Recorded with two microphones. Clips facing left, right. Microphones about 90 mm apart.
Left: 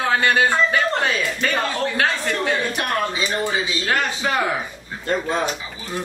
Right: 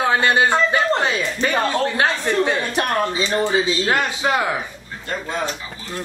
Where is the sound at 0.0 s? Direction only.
20° right (ahead or behind).